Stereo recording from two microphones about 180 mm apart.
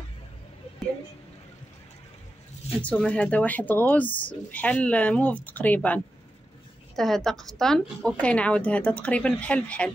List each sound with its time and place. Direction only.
2.8 s speech: 5° left (ahead or behind)
7.0 s speech: centre (ahead or behind)